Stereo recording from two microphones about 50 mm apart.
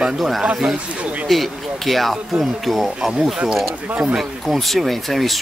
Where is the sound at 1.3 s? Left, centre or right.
Centre.